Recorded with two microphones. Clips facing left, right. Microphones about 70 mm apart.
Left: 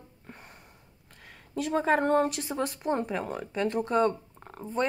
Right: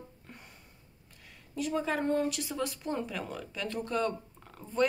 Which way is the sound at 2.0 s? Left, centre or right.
Left.